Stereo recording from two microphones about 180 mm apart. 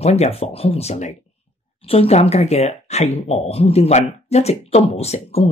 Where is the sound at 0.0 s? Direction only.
35° left (ahead or behind).